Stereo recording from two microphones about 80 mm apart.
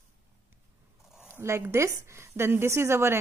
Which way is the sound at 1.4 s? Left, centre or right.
Right.